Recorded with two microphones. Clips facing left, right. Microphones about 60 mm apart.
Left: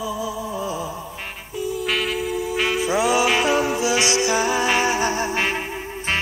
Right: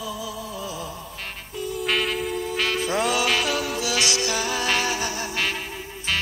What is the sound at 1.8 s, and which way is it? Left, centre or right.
Music, centre.